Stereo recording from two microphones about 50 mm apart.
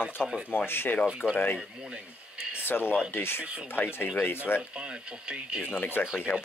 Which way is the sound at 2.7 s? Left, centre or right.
Left.